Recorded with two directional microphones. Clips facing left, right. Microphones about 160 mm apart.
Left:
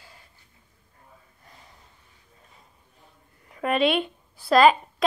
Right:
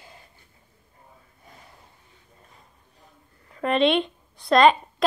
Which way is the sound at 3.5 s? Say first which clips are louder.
Right 2 dB; 10° left (ahead or behind).